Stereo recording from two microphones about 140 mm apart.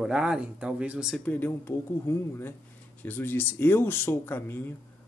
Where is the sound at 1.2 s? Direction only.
10° left (ahead or behind).